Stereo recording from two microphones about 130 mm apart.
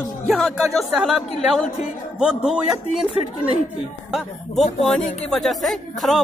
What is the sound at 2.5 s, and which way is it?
Speech, 5° right (ahead or behind).